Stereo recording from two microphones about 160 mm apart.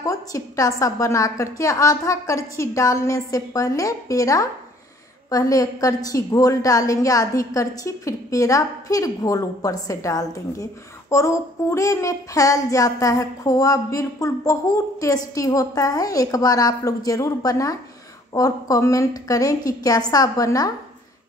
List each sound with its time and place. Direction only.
0.0 s a woman's voice: 20° left (ahead or behind)